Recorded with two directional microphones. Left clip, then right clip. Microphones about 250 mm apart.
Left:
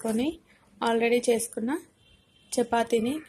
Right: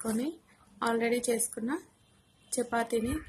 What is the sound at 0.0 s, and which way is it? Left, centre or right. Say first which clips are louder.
A woman's voice: left 6 dB; centre.